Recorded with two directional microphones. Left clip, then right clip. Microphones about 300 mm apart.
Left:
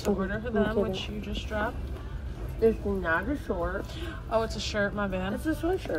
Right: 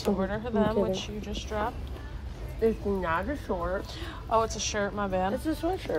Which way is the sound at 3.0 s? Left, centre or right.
Centre.